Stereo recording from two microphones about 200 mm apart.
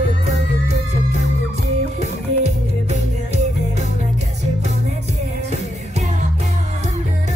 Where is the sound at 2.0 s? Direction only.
35° right (ahead or behind).